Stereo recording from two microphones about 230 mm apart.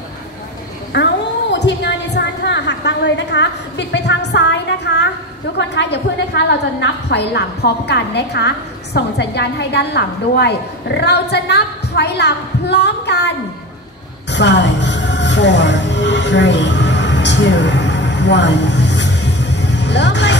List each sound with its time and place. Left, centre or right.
0.9 s a woman's voice: left
14.3 s music: left